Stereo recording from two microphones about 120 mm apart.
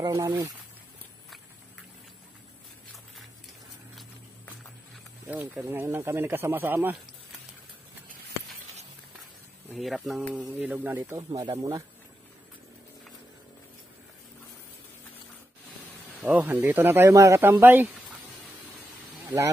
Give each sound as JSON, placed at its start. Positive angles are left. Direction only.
{"t": 0.0, "sound": "speech", "side_deg": -30}
{"t": 5.2, "sound": "speech", "side_deg": -15}
{"t": 9.7, "sound": "speech", "side_deg": -5}
{"t": 10.5, "sound": "speech", "side_deg": -15}
{"t": 11.1, "sound": "speech", "side_deg": -30}
{"t": 16.2, "sound": "speech", "side_deg": -15}
{"t": 19.2, "sound": "speech", "side_deg": -25}